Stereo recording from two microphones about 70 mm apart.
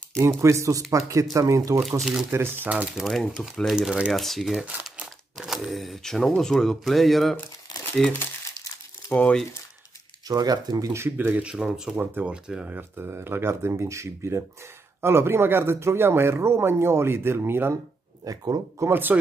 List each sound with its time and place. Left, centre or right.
0.2 s speech: right
1.8 s speech: centre
2.3 s speech: right
3.0 s speech: centre
3.7 s speech: centre
4.1 s speech: centre
9.1 s speech: left
10.2 s speech: right
10.9 s speech: right
11.1 s speech: right
11.4 s speech: centre
12.0 s speech: right
18.2 s speech: right
18.8 s speech: right